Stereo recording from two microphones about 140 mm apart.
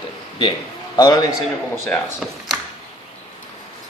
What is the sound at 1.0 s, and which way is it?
Speech, 25° left (ahead or behind).